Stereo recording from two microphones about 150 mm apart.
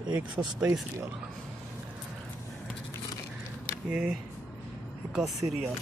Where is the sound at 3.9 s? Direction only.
5° right (ahead or behind).